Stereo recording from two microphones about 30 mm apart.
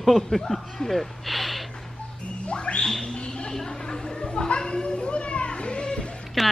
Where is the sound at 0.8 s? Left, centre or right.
Centre.